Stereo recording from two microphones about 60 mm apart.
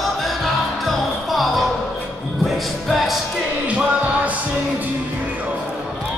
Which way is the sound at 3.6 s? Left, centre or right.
Right.